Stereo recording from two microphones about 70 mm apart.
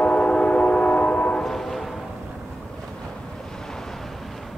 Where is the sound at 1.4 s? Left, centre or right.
Centre.